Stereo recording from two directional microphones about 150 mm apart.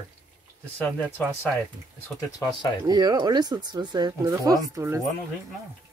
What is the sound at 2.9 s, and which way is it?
Speech, 25° right (ahead or behind).